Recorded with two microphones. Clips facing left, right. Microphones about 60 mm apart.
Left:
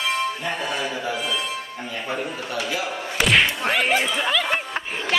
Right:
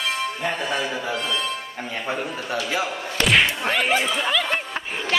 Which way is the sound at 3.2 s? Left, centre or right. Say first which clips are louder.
Even; centre.